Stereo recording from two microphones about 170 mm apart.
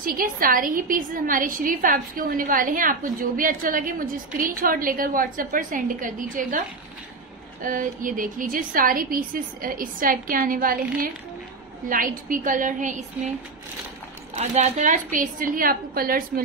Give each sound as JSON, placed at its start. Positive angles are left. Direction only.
{"t": 0.0, "sound": "a woman's voice", "side_deg": -55}
{"t": 7.6, "sound": "a woman's voice", "side_deg": -50}
{"t": 11.9, "sound": "a woman's voice", "side_deg": -55}
{"t": 14.3, "sound": "a woman's voice", "side_deg": -40}